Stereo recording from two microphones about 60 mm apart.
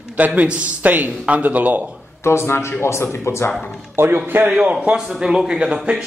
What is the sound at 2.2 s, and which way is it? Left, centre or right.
Speech, left.